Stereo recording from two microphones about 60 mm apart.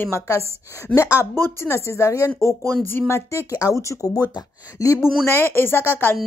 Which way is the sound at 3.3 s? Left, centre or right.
Left.